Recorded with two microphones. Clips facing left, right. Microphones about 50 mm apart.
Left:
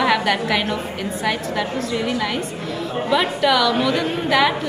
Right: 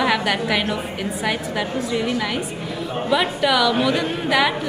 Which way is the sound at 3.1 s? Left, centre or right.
Centre.